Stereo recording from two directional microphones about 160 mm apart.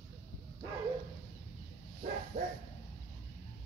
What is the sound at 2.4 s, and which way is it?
Dog, 60° right (ahead or behind).